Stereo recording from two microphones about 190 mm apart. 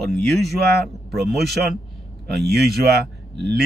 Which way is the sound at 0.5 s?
60° right (ahead or behind).